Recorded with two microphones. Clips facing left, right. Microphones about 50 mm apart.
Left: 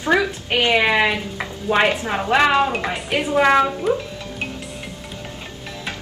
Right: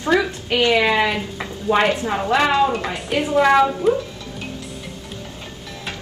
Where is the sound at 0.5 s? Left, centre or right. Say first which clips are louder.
Right 1 dB; left.